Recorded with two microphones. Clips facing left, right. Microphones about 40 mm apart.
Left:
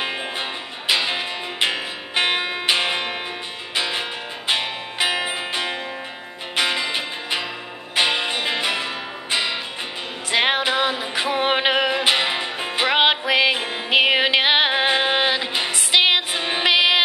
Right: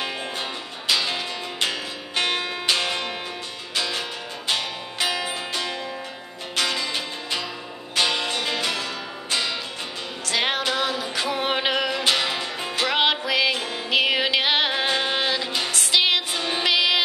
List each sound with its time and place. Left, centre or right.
0.0 s music: left